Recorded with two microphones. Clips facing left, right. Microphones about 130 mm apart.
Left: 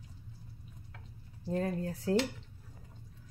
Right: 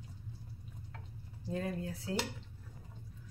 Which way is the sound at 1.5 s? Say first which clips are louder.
Left 4 dB; 40° left (ahead or behind).